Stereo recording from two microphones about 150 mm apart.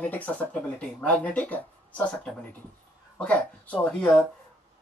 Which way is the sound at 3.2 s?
10° left (ahead or behind).